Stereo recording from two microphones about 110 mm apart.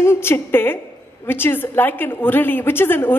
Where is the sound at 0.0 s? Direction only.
25° left (ahead or behind).